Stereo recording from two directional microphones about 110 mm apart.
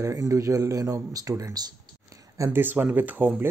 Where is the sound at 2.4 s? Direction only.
20° right (ahead or behind).